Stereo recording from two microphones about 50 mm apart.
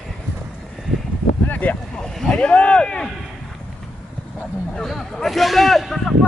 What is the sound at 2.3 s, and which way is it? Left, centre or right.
Speech, left.